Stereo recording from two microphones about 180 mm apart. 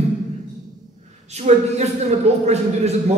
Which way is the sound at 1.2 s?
40° right (ahead or behind).